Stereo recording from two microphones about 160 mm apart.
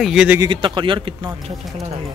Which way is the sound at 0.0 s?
5° right (ahead or behind).